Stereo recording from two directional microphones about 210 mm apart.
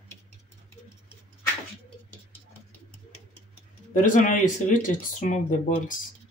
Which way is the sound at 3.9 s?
40° left (ahead or behind).